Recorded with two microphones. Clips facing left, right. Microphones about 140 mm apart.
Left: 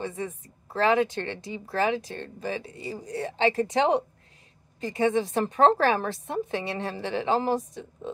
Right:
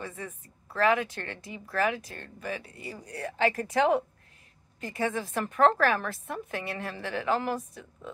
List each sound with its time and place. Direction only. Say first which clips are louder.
0.0 s a woman's voice: left 7 dB; 25° left (ahead or behind)